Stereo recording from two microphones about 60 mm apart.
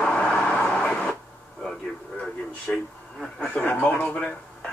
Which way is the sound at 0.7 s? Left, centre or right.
Centre.